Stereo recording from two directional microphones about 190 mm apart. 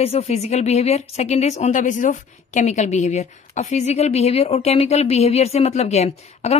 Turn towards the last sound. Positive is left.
turn(degrees=35)  # may be behind; listen again after turning